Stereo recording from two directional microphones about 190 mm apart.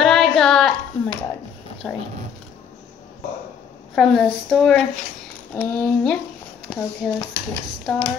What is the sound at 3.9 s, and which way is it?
A woman's voice, centre (ahead or behind).